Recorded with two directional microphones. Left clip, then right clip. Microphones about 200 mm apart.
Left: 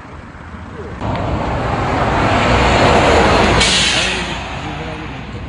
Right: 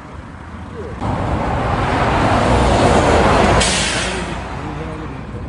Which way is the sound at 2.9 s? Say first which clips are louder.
Left 2 dB; 45° left (ahead or behind).